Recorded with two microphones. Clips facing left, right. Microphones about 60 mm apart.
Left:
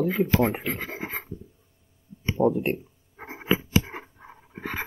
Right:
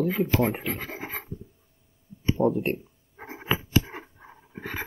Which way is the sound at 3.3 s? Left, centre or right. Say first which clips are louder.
Left 2 dB; left.